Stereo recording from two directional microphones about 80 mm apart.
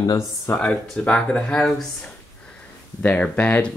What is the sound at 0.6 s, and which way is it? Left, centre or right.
Speech, centre.